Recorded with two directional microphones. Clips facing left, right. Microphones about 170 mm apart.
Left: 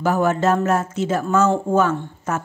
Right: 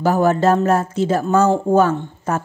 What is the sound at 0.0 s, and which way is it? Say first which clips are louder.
A woman's voice: right 3 dB; 35° right (ahead or behind).